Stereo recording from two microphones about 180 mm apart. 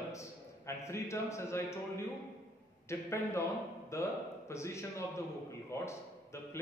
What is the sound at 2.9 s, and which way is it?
A man's voice, 15° left (ahead or behind).